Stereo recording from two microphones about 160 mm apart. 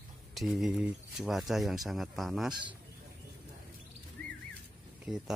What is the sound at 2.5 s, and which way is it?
Speech, 30° right (ahead or behind).